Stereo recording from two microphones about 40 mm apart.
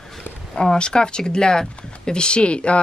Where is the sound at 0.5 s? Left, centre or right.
Left.